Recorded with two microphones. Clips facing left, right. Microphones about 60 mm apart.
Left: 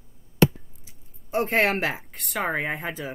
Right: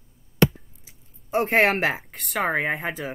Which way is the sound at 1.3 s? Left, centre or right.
Centre.